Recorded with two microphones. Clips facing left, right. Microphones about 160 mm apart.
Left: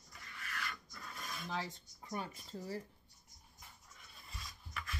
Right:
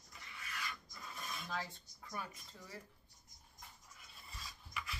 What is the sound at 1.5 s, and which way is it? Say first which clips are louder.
Speech: left 3 dB; 15° left (ahead or behind).